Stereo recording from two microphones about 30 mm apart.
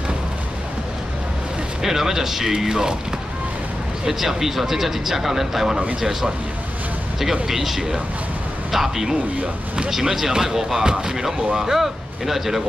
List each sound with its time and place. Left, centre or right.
1.8 s speech: centre
4.0 s speech: centre
7.4 s speech: centre
10.9 s speech: right
11.6 s speech: centre